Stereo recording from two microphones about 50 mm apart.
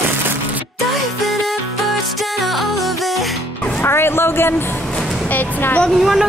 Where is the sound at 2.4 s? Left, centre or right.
Centre.